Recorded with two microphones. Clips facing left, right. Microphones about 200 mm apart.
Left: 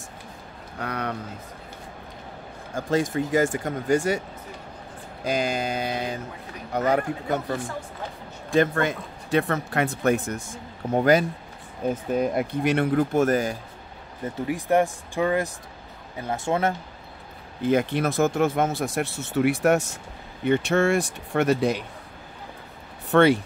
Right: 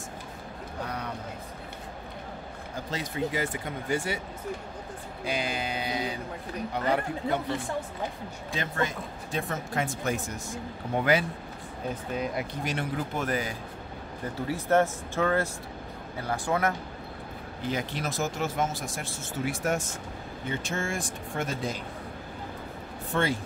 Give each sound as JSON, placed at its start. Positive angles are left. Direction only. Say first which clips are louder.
{"t": 0.7, "sound": "a sound", "louder": "left 6 dB", "side_deg": 70}
{"t": 2.7, "sound": "speech", "louder": "left 11 dB", "side_deg": 45}
{"t": 5.2, "sound": "speech", "louder": "left 6 dB", "side_deg": 45}
{"t": 8.5, "sound": "speech", "louder": "left 10 dB", "side_deg": 60}
{"t": 10.9, "sound": "speech", "louder": "left 6 dB", "side_deg": 40}
{"t": 12.2, "sound": "speech", "louder": "left 8 dB", "side_deg": 55}
{"t": 14.2, "sound": "speech", "louder": "left 4 dB", "side_deg": 15}
{"t": 17.6, "sound": "speech", "louder": "left 10 dB", "side_deg": 55}
{"t": 23.1, "sound": "speech", "louder": "left 11 dB", "side_deg": 70}